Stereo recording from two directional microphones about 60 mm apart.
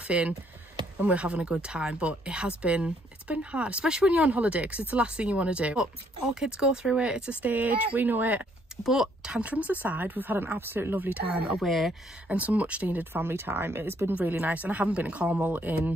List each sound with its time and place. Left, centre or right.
0.1 s speech: centre
7.4 s speech: right
8.8 s speech: centre
9.5 s speech: right
11.5 s speech: centre
12.3 s speech: right
14.4 s speech: right